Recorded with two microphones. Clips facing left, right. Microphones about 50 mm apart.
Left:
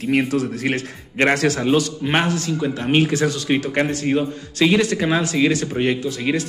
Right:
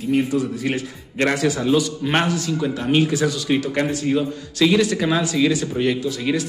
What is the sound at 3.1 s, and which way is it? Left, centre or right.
Speech, left.